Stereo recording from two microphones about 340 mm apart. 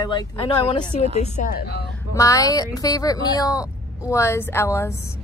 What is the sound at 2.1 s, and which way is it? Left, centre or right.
Speech, centre.